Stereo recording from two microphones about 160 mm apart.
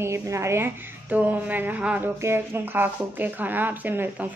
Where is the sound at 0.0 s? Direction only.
15° right (ahead or behind).